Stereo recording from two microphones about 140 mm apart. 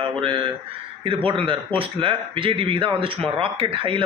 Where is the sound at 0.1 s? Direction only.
40° right (ahead or behind).